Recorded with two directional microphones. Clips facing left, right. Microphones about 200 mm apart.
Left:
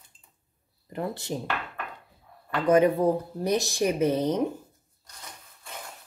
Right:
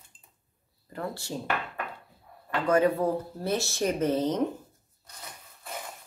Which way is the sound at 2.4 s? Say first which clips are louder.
Left 3 dB; 20° left (ahead or behind).